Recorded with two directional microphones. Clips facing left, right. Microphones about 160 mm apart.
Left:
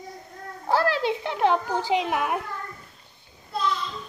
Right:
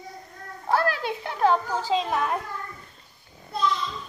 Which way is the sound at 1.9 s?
15° left (ahead or behind).